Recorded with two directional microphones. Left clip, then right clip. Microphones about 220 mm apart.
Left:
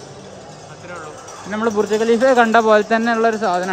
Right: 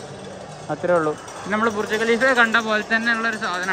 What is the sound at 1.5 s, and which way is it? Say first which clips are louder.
Speech: left 3 dB; 20° left (ahead or behind).